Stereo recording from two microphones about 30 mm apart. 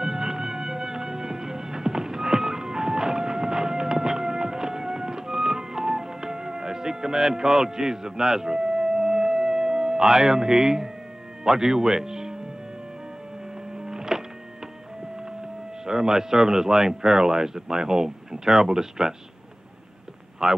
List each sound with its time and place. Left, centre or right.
0.0 s music: centre
11.4 s speech: centre
13.7 s music: right
15.8 s speech: right
20.4 s speech: centre